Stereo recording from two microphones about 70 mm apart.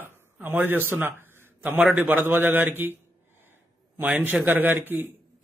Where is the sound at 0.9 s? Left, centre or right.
Right.